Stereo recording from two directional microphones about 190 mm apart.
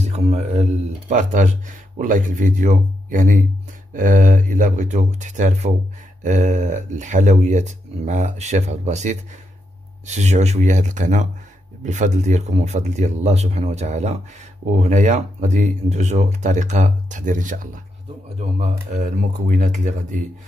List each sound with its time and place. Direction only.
0.0 s speech: 35° right (ahead or behind)
18.6 s speech: 40° right (ahead or behind)